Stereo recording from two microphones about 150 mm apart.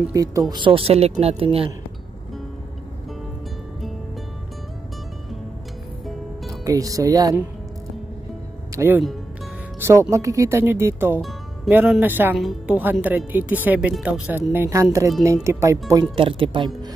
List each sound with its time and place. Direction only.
0.1 s speech: 20° right (ahead or behind); by 1.7 s 40° right (ahead or behind)
6.6 s speech: 25° right (ahead or behind)
8.7 s speech: 15° right (ahead or behind)
11.1 s music: centre (ahead or behind)
11.7 s speech: 10° right (ahead or behind)
12.4 s a woman's voice: centre (ahead or behind)
13.3 s speech: 10° right (ahead or behind)
15.9 s speech: 30° right (ahead or behind)